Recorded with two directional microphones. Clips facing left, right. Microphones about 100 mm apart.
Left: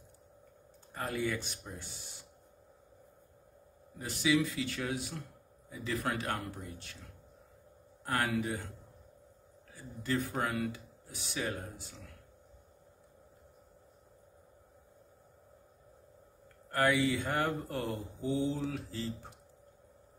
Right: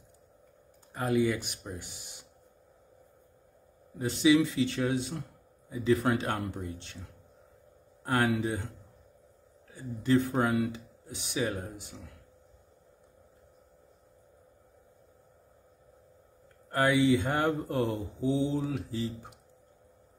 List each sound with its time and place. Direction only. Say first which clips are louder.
0.9 s speech: right 7 dB; 15° right (ahead or behind)
4.0 s speech: right 7 dB; 25° right (ahead or behind)
8.0 s speech: right 5 dB; 25° right (ahead or behind)
9.8 s speech: right 8 dB; 20° right (ahead or behind)
17.0 s speech: right 6 dB; 25° right (ahead or behind)